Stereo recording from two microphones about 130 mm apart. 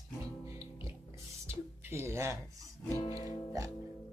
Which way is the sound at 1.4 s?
20° right (ahead or behind).